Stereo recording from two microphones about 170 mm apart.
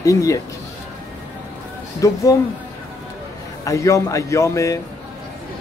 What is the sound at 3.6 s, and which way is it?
A man's voice, 20° left (ahead or behind).